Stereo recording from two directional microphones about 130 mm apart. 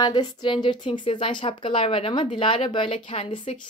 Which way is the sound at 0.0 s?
35° left (ahead or behind).